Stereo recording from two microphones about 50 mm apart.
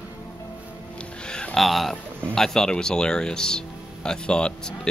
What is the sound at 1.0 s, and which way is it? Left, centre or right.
Music, centre.